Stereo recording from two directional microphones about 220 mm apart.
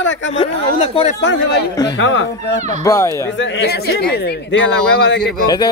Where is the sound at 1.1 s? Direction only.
50° left (ahead or behind).